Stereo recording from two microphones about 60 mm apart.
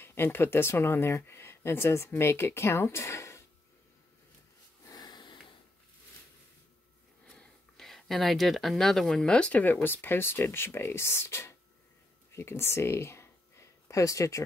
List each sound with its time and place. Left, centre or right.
0.0 s speech: left
7.2 s speech: centre; by 14.4 s left